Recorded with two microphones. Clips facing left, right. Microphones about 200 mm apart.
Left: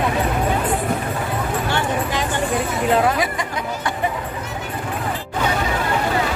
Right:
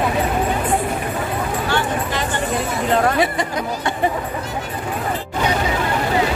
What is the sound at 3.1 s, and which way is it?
Speech, 30° right (ahead or behind).